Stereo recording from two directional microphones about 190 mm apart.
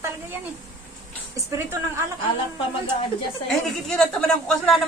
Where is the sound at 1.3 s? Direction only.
15° right (ahead or behind).